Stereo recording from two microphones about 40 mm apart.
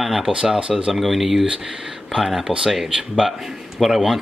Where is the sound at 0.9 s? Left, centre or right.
Centre.